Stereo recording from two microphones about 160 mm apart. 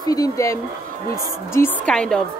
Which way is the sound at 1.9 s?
5° left (ahead or behind).